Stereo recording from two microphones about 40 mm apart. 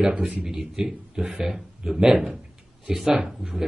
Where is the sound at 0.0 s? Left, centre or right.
Right.